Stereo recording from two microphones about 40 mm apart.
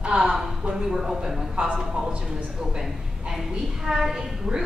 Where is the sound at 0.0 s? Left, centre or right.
Right.